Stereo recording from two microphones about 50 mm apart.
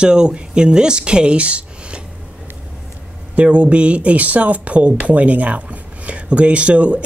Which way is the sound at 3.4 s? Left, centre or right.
Right.